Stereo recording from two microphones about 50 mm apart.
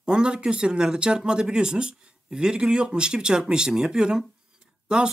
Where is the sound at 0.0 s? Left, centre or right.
Centre.